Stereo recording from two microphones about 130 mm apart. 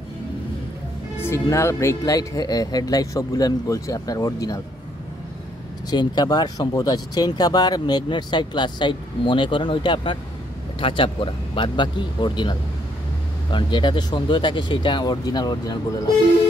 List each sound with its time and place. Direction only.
1.1 s speech: 20° left (ahead or behind)
5.9 s speech: 35° left (ahead or behind)